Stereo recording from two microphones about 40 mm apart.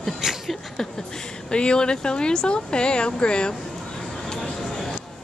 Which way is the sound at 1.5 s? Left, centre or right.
Left.